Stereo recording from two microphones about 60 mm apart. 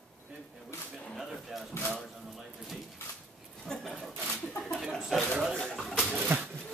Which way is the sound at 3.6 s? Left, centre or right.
Centre.